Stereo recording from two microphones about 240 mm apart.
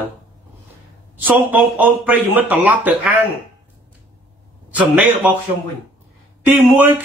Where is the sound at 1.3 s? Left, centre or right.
Centre.